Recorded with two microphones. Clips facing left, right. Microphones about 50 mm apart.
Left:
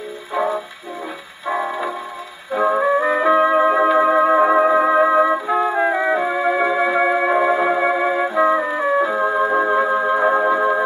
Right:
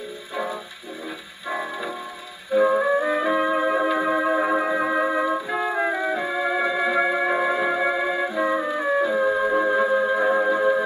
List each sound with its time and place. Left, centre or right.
1.6 s tick-tock: left
2.8 s music: left
3.3 s music: left
5.9 s music: left